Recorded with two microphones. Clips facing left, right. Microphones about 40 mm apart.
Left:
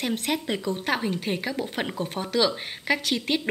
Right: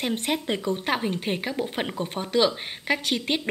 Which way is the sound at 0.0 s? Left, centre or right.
Centre.